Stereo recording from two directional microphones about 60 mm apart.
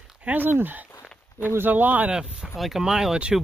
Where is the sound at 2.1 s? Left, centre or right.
Centre.